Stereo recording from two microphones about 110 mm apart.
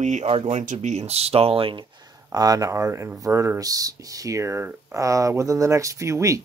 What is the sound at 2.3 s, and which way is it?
Speech, 35° right (ahead or behind).